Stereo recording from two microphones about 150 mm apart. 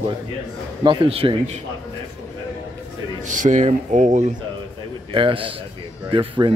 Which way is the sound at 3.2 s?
55° right (ahead or behind).